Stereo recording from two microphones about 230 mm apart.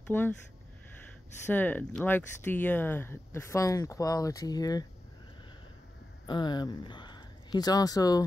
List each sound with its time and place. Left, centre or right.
0.0 s speech: centre
1.4 s speech: centre
6.2 s speech: centre